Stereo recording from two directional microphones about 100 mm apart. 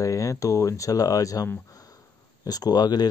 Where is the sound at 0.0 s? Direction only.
35° left (ahead or behind).